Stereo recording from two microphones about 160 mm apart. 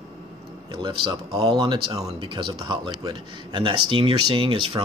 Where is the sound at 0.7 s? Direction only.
30° right (ahead or behind).